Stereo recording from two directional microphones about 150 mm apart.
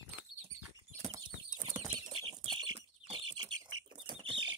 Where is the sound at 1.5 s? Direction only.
55° right (ahead or behind).